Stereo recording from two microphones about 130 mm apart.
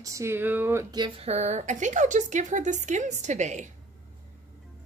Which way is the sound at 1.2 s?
60° right (ahead or behind).